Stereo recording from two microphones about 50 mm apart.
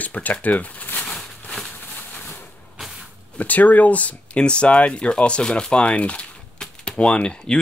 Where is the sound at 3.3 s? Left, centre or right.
Left.